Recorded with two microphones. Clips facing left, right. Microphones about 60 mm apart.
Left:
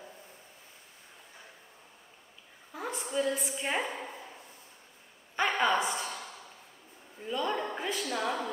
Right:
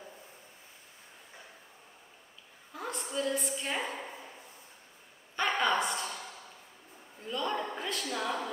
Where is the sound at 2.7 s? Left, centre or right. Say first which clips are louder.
Left 2 dB; centre.